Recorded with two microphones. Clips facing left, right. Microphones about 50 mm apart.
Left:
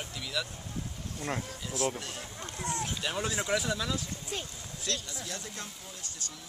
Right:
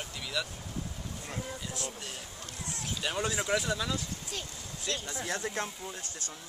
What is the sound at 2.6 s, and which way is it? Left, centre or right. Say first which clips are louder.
Speech: left 8 dB; left.